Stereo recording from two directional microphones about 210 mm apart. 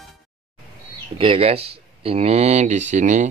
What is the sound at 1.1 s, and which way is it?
Speech, 25° right (ahead or behind).